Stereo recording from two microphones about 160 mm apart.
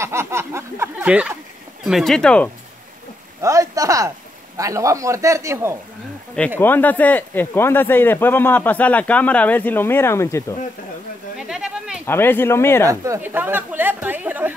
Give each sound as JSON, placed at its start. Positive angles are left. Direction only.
{"t": 0.0, "sound": "a woman's voice", "side_deg": -15}
{"t": 3.3, "sound": "a man's voice", "side_deg": -20}
{"t": 6.6, "sound": "speech", "side_deg": 10}
{"t": 11.3, "sound": "a sound", "side_deg": -5}
{"t": 12.1, "sound": "speech", "side_deg": 15}
{"t": 12.8, "sound": "a woman's voice", "side_deg": -20}